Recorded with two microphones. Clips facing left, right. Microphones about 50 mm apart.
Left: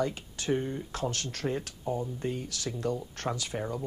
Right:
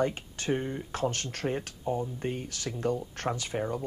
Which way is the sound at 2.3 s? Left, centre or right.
Right.